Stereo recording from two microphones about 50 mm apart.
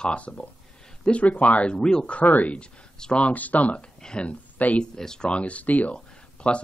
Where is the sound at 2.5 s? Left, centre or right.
Left.